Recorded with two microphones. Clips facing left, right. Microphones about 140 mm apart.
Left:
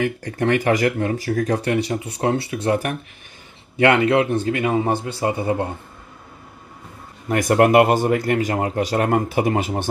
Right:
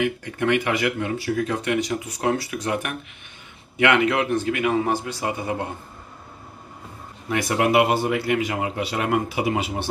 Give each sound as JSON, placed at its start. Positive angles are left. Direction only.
{"t": 0.0, "sound": "a man's voice", "side_deg": 40}
{"t": 7.2, "sound": "speech", "side_deg": 45}